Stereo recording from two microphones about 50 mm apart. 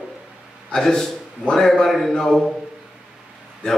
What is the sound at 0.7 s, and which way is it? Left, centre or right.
A man's voice, centre.